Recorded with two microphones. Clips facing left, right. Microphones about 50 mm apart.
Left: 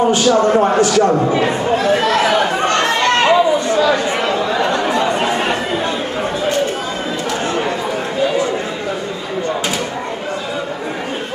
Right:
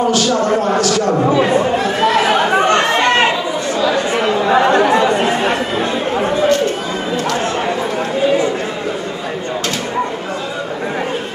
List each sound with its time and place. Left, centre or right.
0.0 s speech: left
2.5 s chatter: right
4.5 s chatter: right